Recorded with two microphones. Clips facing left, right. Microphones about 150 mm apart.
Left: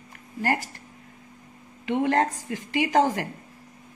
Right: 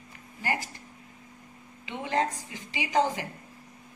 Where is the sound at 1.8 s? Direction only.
60° left (ahead or behind).